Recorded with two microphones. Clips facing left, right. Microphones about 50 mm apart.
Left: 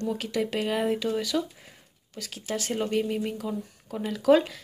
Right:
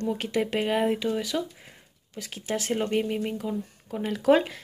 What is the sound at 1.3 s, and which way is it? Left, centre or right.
Speech, centre.